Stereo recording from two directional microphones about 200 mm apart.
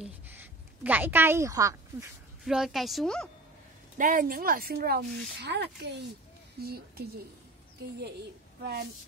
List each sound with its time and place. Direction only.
0.0 s a sound: 10° right (ahead or behind)
2.4 s a woman's voice: 5° right (ahead or behind)
4.0 s a woman's voice: 45° right (ahead or behind)